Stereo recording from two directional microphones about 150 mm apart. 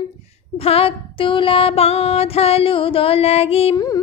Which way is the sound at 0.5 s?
40° left (ahead or behind).